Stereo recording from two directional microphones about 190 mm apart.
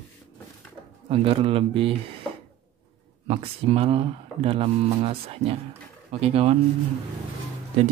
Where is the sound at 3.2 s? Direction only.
30° right (ahead or behind).